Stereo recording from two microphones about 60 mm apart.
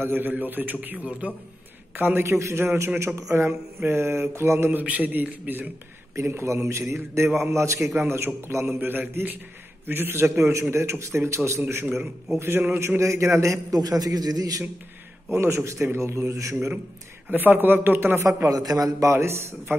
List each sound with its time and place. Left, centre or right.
0.0 s a man's voice: right
2.0 s a man's voice: right
4.6 s a man's voice: right
6.1 s a man's voice: right
8.7 s a man's voice: right
11.7 s a man's voice: right
15.3 s a man's voice: right
17.3 s a man's voice: right
18.5 s a man's voice: right
19.1 s a man's voice: right